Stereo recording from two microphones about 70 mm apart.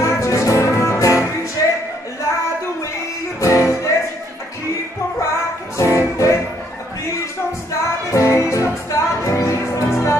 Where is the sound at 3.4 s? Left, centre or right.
Left.